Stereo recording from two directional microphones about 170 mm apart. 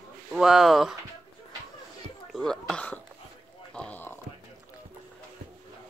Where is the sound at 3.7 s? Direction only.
5° left (ahead or behind).